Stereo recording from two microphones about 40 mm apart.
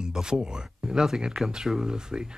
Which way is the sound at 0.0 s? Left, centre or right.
Centre.